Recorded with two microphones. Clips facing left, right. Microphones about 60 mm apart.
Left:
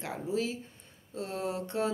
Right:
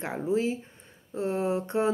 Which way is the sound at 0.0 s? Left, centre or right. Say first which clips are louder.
Right 5 dB; right.